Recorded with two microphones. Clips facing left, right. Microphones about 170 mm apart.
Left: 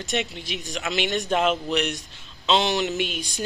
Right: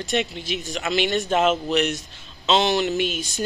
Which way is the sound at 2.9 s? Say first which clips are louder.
Right 4 dB; 40° right (ahead or behind).